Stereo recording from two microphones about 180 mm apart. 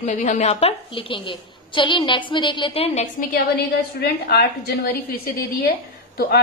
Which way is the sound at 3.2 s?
55° left (ahead or behind).